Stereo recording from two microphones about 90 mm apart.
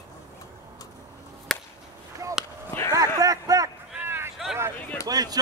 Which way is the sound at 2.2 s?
35° right (ahead or behind).